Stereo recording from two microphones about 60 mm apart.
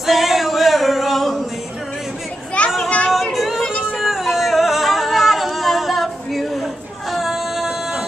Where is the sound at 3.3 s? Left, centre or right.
Centre.